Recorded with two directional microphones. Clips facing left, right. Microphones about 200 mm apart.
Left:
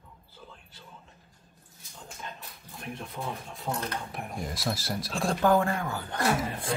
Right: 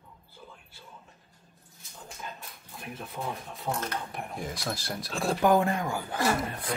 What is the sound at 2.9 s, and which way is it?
Speech, centre (ahead or behind).